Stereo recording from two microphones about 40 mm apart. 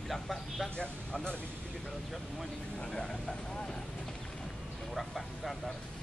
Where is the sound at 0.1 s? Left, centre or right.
Centre.